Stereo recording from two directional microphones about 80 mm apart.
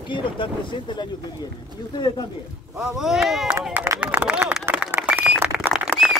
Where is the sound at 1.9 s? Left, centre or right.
Left.